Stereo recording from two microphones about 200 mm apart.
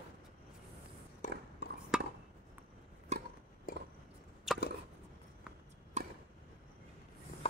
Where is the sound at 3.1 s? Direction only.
35° right (ahead or behind).